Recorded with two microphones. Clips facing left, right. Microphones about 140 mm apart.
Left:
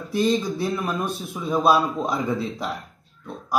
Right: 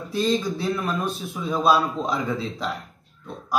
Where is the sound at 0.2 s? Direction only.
15° left (ahead or behind).